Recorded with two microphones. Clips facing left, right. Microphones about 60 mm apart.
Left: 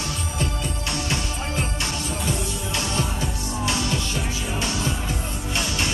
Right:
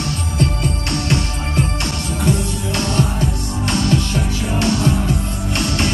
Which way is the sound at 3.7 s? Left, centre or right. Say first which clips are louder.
Right 9 dB; right.